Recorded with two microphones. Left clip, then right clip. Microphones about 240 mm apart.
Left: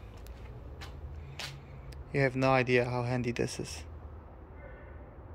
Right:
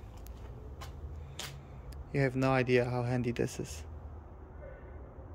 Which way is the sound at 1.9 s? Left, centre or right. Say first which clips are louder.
Left 3 dB; centre.